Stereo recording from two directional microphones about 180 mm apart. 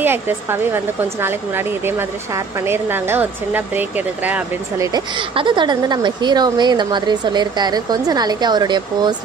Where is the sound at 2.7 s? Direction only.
10° right (ahead or behind).